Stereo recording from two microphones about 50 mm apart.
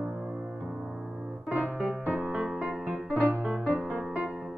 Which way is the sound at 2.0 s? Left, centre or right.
Right.